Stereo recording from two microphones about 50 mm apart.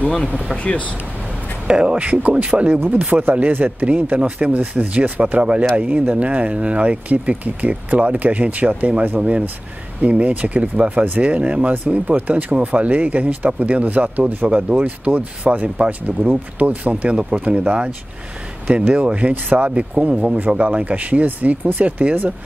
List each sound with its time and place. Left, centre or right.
0.7 s speech: left
1.7 s speech: right
10.0 s speech: right
17.0 s speech: centre
18.9 s speech: right
19.7 s speech: right